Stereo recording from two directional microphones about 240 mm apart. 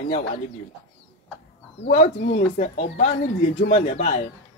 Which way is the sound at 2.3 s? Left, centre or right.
Left.